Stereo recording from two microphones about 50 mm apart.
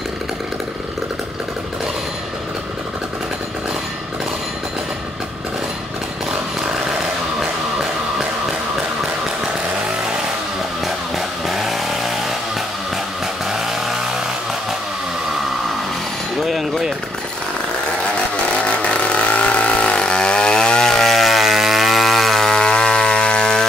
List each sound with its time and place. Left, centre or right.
7.8 s music: centre
11.1 s chainsaw: centre
13.5 s vehicle: centre
16.3 s vehicle: centre
18.3 s chainsaw: left